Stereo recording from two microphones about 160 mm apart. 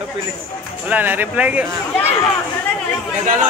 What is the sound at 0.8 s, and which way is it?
Speech, 10° right (ahead or behind).